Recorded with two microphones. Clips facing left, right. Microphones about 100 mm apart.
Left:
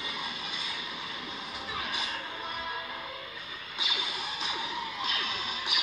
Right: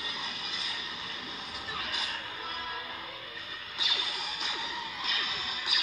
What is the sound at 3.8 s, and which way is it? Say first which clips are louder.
Music: left 2 dB; 25° left (ahead or behind).